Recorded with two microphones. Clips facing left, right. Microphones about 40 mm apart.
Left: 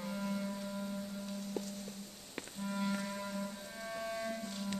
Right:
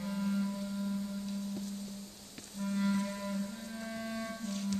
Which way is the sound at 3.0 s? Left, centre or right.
Centre.